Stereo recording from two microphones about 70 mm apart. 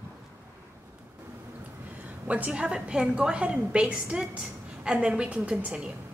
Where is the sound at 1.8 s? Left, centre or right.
Right.